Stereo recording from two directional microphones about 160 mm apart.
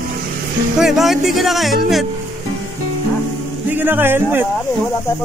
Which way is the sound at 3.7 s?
10° right (ahead or behind).